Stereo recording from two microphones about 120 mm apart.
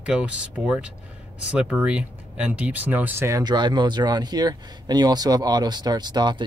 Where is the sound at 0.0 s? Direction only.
10° right (ahead or behind).